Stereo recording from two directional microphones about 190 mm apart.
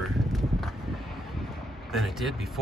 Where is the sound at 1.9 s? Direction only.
Centre (ahead or behind).